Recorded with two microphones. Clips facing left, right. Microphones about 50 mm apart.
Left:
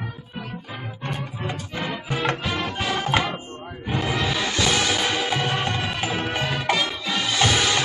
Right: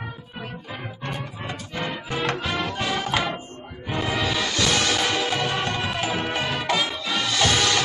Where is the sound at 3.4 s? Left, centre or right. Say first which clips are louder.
Left 2 dB; left.